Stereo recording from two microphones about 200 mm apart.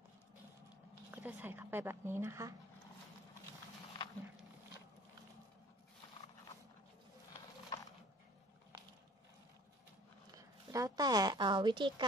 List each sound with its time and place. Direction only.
1.1 s a woman's voice: 10° right (ahead or behind)
7.3 s horse: 20° left (ahead or behind)
10.3 s a woman's voice: 15° right (ahead or behind)